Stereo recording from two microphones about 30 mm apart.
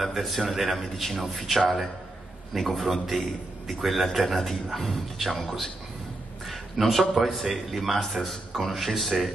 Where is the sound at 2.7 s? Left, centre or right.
Centre.